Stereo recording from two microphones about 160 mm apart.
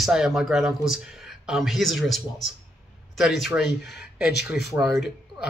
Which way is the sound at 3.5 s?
5° right (ahead or behind).